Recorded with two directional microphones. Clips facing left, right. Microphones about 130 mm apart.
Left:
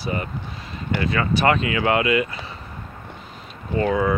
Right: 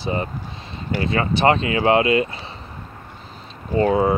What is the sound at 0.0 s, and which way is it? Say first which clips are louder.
Speech: right 2 dB; 25° right (ahead or behind).